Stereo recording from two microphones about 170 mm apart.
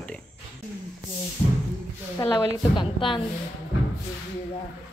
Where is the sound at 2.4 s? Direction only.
30° left (ahead or behind).